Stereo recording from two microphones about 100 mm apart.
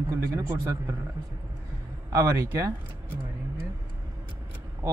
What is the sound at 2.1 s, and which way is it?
Speech, 30° right (ahead or behind).